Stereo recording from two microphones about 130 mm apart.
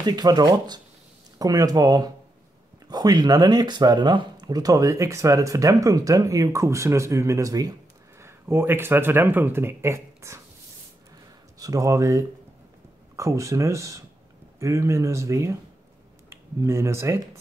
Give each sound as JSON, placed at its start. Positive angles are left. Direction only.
{"t": 0.0, "sound": "speech", "side_deg": -30}
{"t": 11.6, "sound": "speech", "side_deg": -25}